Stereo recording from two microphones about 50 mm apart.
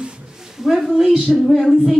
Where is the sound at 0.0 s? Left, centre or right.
Centre.